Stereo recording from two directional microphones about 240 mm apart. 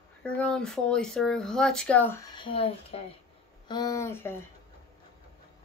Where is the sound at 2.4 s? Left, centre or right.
Left.